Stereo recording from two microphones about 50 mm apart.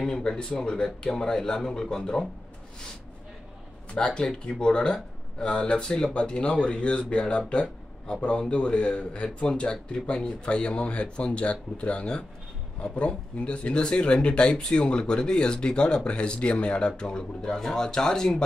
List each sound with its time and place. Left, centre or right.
0.0 s speech: centre
3.9 s speech: centre